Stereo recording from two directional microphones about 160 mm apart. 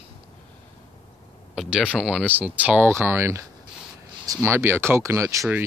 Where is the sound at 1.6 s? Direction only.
5° right (ahead or behind).